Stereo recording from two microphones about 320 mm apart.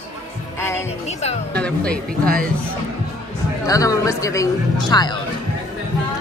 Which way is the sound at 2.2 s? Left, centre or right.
Right.